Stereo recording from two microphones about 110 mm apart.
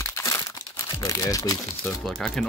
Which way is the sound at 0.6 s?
30° left (ahead or behind).